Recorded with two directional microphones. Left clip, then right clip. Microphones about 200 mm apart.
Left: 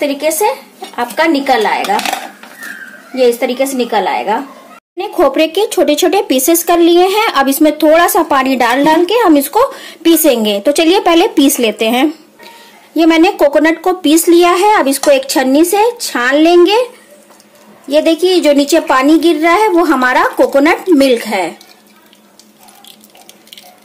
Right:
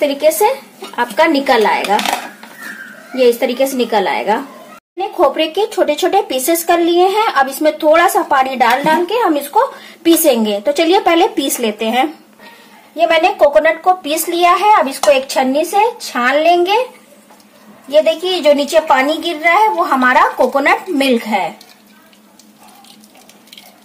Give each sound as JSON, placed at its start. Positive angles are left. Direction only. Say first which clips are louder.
{"t": 0.0, "sound": "speech", "louder": "right 1 dB", "side_deg": 5}
{"t": 3.2, "sound": "speech", "louder": "left 1 dB", "side_deg": 0}
{"t": 4.9, "sound": "speech", "louder": "left 2 dB", "side_deg": 45}
{"t": 12.9, "sound": "speech", "louder": "left 2 dB", "side_deg": 60}
{"t": 17.9, "sound": "speech", "louder": "left 2 dB", "side_deg": 60}